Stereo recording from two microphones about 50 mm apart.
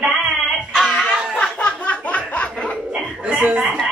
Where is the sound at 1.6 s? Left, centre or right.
Left.